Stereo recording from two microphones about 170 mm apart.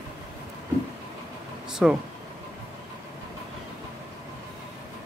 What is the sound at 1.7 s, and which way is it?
Speech, 5° right (ahead or behind).